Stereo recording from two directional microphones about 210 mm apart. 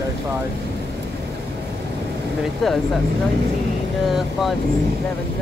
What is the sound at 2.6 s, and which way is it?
Speech, centre (ahead or behind).